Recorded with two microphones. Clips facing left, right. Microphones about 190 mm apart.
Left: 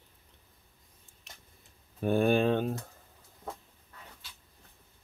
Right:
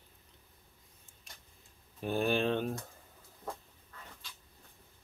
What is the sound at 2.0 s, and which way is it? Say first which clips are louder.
Speech: left 5 dB; 55° left (ahead or behind).